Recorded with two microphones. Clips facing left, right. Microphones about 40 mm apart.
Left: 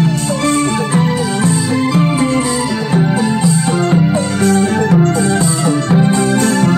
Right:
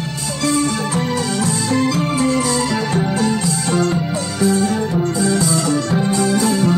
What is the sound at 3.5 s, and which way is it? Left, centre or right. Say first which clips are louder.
Music: left 4 dB; left.